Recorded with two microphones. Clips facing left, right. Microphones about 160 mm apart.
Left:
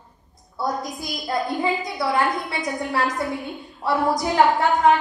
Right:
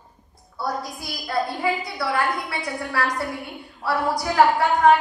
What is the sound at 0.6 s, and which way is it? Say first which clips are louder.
A woman's voice: left 2 dB; 20° left (ahead or behind).